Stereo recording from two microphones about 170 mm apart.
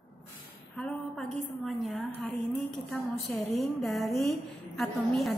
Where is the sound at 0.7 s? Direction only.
5° left (ahead or behind).